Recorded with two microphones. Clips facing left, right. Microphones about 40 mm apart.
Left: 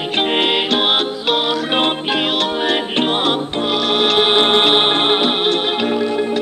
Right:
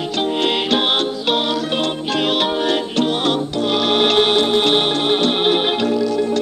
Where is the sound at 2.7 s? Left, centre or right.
Left.